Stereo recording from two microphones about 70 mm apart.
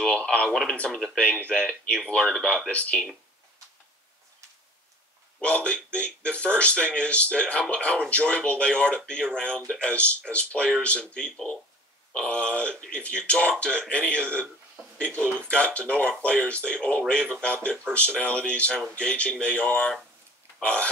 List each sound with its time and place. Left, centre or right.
0.0 s speech: centre
2.2 s speech: centre
2.7 s speech: centre
5.4 s speech: centre